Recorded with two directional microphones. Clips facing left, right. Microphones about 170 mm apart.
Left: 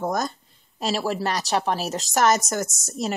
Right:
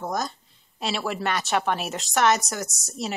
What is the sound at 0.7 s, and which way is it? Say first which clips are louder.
Speech: left 3 dB; 40° left (ahead or behind).